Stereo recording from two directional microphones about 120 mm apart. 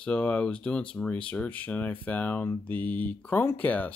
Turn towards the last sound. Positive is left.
turn(degrees=15)  # may be behind; listen again after turning